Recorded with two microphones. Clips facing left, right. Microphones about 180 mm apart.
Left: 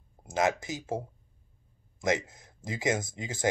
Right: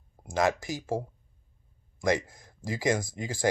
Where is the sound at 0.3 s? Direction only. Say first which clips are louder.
Right 1 dB; 20° left (ahead or behind).